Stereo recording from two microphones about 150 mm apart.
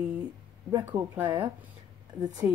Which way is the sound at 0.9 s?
15° right (ahead or behind).